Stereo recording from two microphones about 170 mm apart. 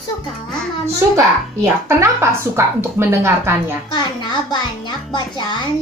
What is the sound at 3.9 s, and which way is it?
Speech, 25° left (ahead or behind).